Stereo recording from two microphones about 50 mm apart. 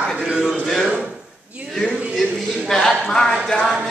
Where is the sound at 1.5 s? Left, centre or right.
Right.